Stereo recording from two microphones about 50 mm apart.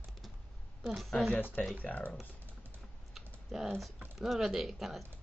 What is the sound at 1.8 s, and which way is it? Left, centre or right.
Speech, left.